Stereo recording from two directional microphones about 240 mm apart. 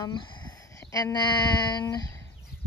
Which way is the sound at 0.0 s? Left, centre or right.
Centre.